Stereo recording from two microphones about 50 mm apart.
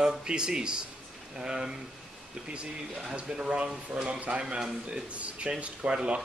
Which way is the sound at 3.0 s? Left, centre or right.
Centre.